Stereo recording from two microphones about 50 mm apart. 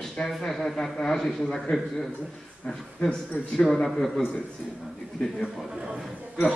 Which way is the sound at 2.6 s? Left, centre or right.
Centre.